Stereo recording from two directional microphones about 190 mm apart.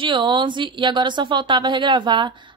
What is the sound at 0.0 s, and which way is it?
A woman's voice, 25° right (ahead or behind).